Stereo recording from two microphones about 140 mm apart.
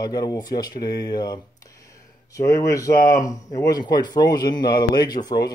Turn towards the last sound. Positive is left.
turn(degrees=30)  # may be behind; listen again after turning